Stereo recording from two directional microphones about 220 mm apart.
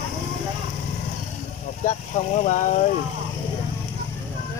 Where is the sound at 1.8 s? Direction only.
30° left (ahead or behind).